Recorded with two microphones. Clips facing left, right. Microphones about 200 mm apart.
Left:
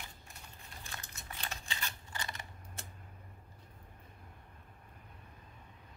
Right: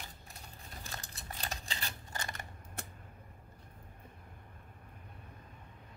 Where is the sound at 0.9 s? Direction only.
35° right (ahead or behind).